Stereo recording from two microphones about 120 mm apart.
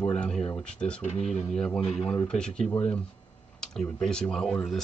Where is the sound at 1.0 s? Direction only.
60° left (ahead or behind).